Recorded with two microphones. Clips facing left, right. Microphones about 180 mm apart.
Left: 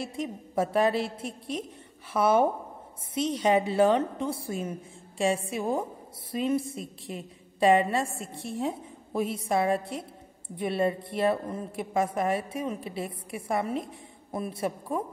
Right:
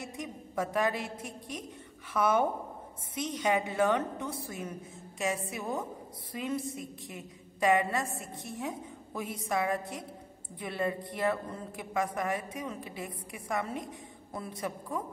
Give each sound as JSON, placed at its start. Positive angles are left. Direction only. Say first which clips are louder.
{"t": 0.1, "sound": "a woman's voice", "louder": "left 6 dB", "side_deg": 30}